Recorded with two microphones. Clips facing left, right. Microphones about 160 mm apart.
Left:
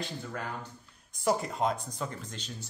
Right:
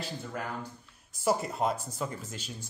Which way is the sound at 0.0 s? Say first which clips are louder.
Even; 5° right (ahead or behind).